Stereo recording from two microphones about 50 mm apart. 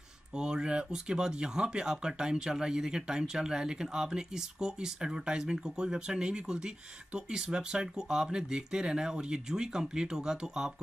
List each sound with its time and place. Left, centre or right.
0.4 s speech: centre